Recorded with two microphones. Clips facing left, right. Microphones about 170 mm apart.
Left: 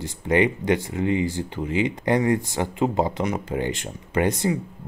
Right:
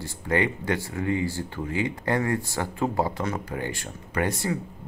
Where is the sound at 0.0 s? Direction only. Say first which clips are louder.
Left 5 dB; 20° left (ahead or behind).